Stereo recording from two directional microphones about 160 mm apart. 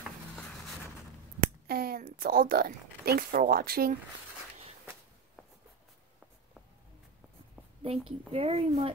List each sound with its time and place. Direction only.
1.7 s speech: 70° right (ahead or behind)
7.8 s a woman's voice: 35° right (ahead or behind)